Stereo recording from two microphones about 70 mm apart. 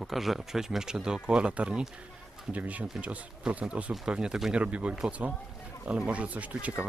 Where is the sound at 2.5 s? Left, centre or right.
Centre.